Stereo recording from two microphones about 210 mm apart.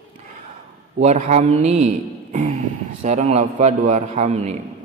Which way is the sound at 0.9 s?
30° right (ahead or behind).